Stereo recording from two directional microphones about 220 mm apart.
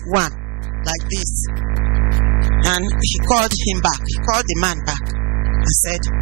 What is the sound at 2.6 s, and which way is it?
Speech, 10° right (ahead or behind).